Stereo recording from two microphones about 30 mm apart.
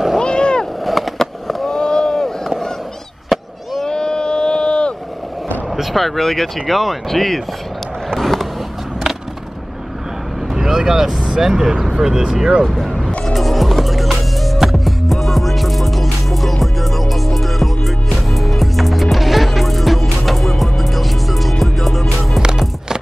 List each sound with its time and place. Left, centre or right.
0.2 s boat: left
0.8 s skateboard: centre
1.1 s fireworks: centre
1.7 s boat: left
3.3 s a sound: centre
3.9 s a sound: left
5.8 s speech: centre
6.7 s speech: centre
7.1 s speech: centre
8.1 s vehicle: centre
10.5 s vehicle: centre
11.3 s speech: centre
13.3 s music: centre